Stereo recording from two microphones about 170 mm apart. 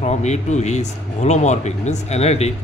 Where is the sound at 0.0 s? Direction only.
40° left (ahead or behind).